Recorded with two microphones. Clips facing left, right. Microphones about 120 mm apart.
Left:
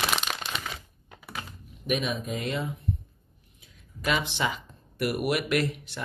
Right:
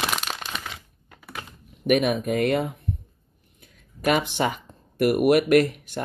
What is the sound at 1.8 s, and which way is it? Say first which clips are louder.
Speech: right 8 dB; 60° right (ahead or behind).